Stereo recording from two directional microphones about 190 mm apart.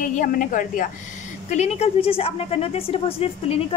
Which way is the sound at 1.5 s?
35° left (ahead or behind).